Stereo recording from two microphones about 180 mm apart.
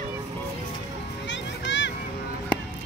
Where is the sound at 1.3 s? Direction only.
90° left.